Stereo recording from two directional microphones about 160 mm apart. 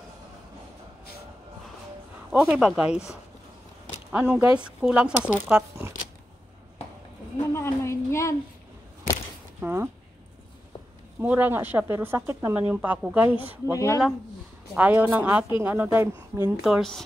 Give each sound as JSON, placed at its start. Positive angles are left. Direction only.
{"t": 2.3, "sound": "speech", "side_deg": -5}
{"t": 4.1, "sound": "a woman's voice", "side_deg": -10}
{"t": 7.5, "sound": "a sound", "side_deg": 15}
{"t": 9.6, "sound": "speech", "side_deg": -15}
{"t": 11.1, "sound": "a woman's voice", "side_deg": -10}
{"t": 13.7, "sound": "speech", "side_deg": 20}
{"t": 14.8, "sound": "a woman's voice", "side_deg": -10}
{"t": 16.6, "sound": "speech", "side_deg": 0}